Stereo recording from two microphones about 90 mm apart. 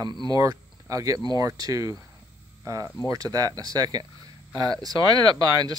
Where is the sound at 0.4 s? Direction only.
40° right (ahead or behind).